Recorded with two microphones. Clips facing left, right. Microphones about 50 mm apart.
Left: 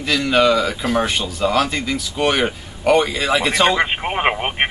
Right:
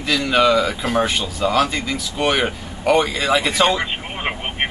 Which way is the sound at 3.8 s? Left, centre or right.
Left.